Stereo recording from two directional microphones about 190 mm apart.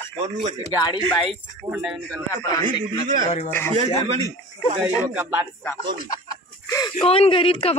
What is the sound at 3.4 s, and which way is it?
Speech, 10° left (ahead or behind).